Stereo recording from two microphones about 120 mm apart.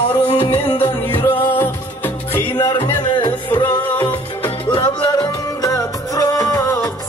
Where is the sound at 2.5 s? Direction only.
35° left (ahead or behind).